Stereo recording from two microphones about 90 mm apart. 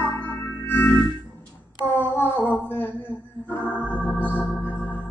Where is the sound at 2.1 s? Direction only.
25° left (ahead or behind).